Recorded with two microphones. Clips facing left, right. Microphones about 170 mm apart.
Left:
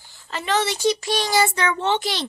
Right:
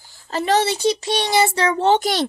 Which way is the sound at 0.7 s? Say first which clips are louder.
Right 2 dB; 20° right (ahead or behind).